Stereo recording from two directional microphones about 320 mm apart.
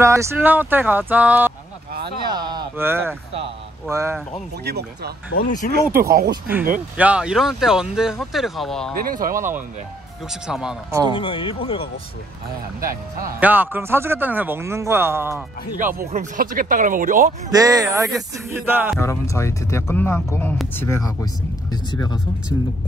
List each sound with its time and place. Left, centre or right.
0.0 s speech: centre
2.2 s a sound: centre
3.9 s speech: centre
4.6 s speech: right
5.4 s speech: left
5.9 s speech: right
6.3 s speech: centre
8.9 s speech: right
10.4 s speech: centre
11.1 s speech: centre
13.4 s speech: centre
16.1 s speech: right
17.5 s speech: centre
18.9 s speech: centre